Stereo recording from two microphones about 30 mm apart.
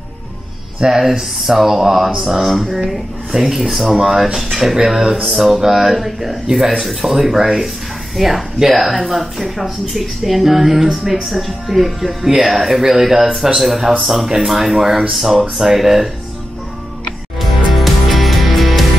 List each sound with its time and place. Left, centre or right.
0.7 s speech: centre
17.4 s music: centre